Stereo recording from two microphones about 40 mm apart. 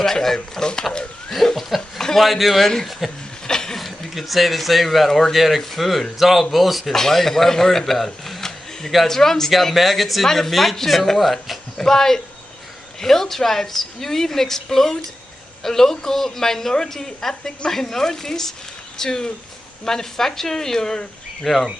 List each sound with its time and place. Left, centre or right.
0.0 s a woman's voice: centre
1.3 s speech: centre
3.4 s a sound: centre
3.7 s a woman's voice: centre
11.7 s a woman's voice: centre